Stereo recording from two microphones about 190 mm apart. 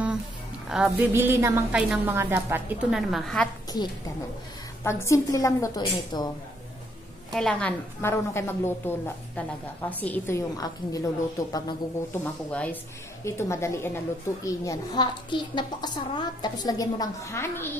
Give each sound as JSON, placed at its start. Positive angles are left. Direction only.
{"t": 0.7, "sound": "a woman's voice", "side_deg": -5}
{"t": 1.1, "sound": "a woman's voice", "side_deg": -15}
{"t": 2.9, "sound": "a woman's voice", "side_deg": 0}
{"t": 4.8, "sound": "a woman's voice", "side_deg": 15}
{"t": 7.3, "sound": "a woman's voice", "side_deg": 5}
{"t": 12.4, "sound": "a woman's voice", "side_deg": 5}